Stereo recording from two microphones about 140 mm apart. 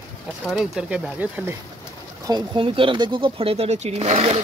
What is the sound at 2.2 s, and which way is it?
Speech, 30° right (ahead or behind).